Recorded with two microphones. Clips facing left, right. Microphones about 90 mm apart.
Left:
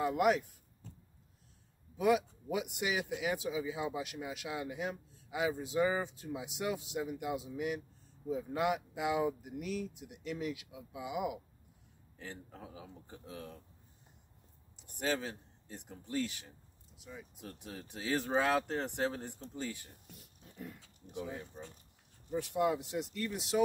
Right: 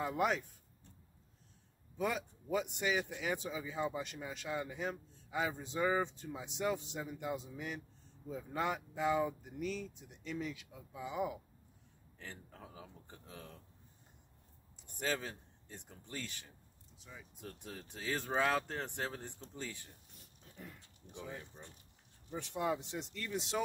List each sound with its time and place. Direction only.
0.0 s speech: 5° left (ahead or behind)
2.0 s speech: 10° left (ahead or behind)
14.8 s speech: 10° left (ahead or behind)
20.2 s a sound: 5° left (ahead or behind)
22.3 s speech: 5° left (ahead or behind)